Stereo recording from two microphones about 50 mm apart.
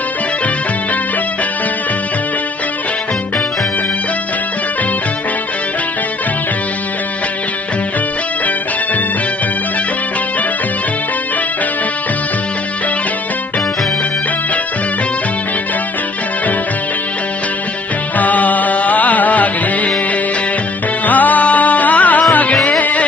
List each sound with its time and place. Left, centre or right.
18.1 s music: left
21.0 s music: left